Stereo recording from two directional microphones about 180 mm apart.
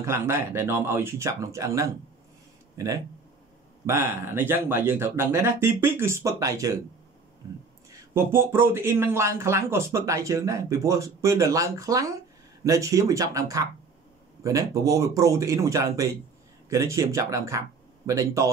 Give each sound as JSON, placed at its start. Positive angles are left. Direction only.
{"t": 0.0, "sound": "speech", "side_deg": -15}
{"t": 7.9, "sound": "speech", "side_deg": -15}